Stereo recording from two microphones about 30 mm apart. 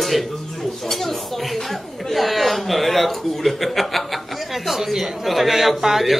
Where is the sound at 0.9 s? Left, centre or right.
Centre.